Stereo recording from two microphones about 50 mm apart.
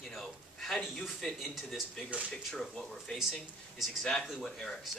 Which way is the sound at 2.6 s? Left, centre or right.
Centre.